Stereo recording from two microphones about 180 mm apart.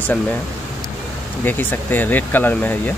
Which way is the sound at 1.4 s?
10° left (ahead or behind).